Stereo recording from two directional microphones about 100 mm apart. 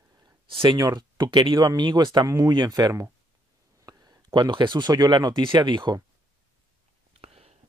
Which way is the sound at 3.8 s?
40° right (ahead or behind).